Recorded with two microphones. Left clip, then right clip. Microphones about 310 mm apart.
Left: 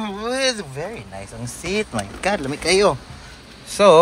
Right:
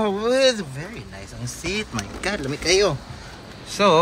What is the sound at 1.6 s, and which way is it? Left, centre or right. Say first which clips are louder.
Speech: left 4 dB; centre.